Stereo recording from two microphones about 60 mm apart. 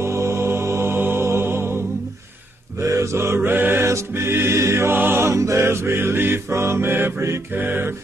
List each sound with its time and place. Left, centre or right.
0.0 s music: right
0.9 s music: right
2.8 s mantra: right
3.3 s mantra: right
3.8 s music: right
4.9 s music: right
5.2 s chant: right
7.5 s mantra: right